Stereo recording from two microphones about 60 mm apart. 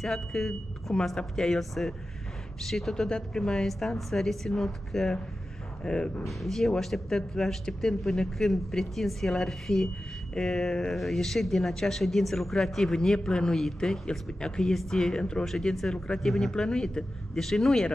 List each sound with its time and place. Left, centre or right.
0.0 s speech: centre
6.2 s speech: centre